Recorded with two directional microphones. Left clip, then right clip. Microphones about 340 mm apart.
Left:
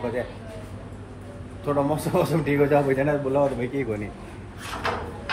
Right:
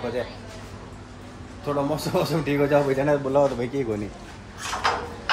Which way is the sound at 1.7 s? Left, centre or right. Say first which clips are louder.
Left 1 dB; centre.